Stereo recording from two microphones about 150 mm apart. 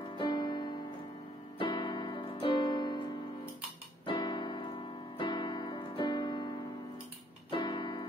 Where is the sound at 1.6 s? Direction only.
35° left (ahead or behind).